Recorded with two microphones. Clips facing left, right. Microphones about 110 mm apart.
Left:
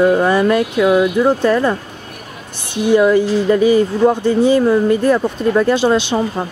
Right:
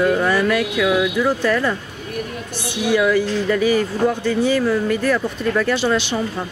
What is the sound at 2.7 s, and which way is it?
Speech, 50° left (ahead or behind).